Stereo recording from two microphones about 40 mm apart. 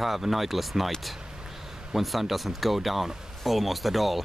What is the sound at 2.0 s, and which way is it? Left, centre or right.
Speech, centre.